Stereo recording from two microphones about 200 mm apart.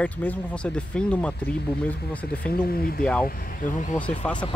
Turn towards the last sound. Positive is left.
turn(degrees=5)  # may be behind; listen again after turning